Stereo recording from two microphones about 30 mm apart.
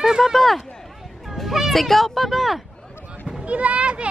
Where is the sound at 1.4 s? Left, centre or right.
Centre.